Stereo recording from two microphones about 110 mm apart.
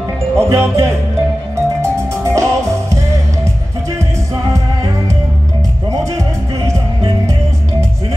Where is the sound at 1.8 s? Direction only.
25° right (ahead or behind).